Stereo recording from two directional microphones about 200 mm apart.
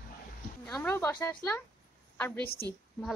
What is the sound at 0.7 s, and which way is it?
A woman's voice, 10° left (ahead or behind).